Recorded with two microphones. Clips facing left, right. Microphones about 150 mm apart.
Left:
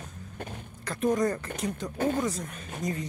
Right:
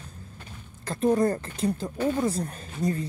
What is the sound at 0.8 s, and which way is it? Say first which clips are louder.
Speech: right 3 dB; 30° right (ahead or behind).